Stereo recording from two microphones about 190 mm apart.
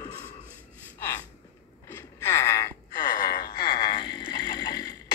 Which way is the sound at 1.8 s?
15° left (ahead or behind).